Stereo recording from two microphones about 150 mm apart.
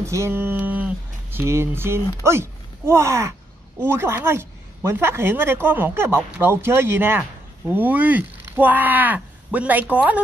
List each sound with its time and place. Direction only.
0.0 s speech: 20° right (ahead or behind)